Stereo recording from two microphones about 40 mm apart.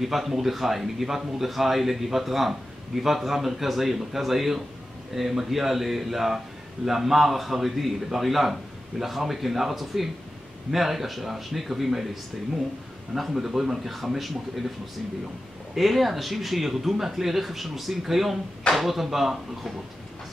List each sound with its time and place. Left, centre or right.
0.0 s speech: centre
13.1 s speech: centre
15.7 s speech: centre